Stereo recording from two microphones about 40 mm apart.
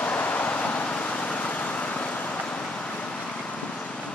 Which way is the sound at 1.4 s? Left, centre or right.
Left.